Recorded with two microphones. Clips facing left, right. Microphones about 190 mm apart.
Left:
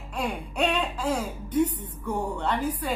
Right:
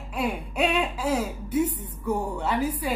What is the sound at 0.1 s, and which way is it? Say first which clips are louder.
Speech: right 2 dB; 5° right (ahead or behind).